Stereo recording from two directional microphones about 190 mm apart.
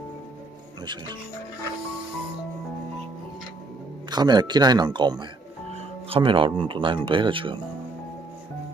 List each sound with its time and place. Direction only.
4.1 s speech: 20° right (ahead or behind)